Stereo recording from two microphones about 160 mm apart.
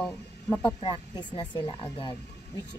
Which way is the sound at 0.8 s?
30° left (ahead or behind).